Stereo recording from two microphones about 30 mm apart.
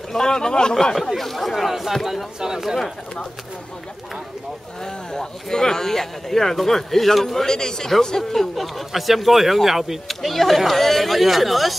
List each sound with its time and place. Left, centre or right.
0.1 s speech: centre
1.1 s speech: centre
1.7 s speech: centre
5.1 s speech: left
8.2 s speech: centre
10.0 s speech: centre